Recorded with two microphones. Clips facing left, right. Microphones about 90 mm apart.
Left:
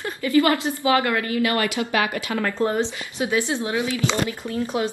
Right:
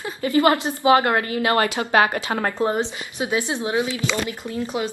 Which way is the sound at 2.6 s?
20° right (ahead or behind).